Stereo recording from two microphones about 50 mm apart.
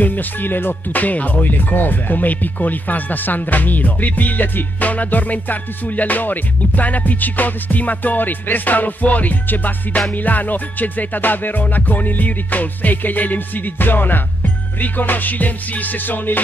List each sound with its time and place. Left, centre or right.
0.0 s speech: left